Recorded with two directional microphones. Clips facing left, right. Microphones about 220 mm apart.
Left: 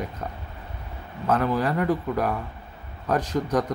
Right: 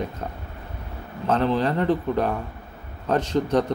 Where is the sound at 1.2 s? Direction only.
25° right (ahead or behind).